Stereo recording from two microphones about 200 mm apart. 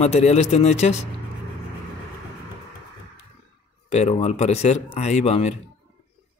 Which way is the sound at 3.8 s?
35° left (ahead or behind).